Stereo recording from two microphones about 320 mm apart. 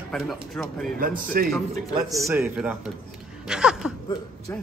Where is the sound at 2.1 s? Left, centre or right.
Centre.